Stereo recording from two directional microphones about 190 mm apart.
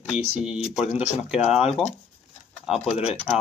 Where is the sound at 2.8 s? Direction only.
30° left (ahead or behind).